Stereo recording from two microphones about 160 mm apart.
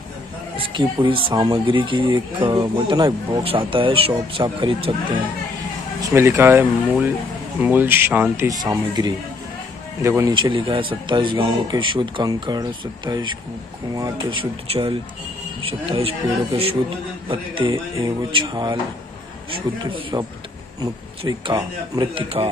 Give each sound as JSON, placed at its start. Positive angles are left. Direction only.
{"t": 0.6, "sound": "speech", "side_deg": -30}
{"t": 6.0, "sound": "speech", "side_deg": -15}
{"t": 10.3, "sound": "speech", "side_deg": -30}
{"t": 19.8, "sound": "speech", "side_deg": -30}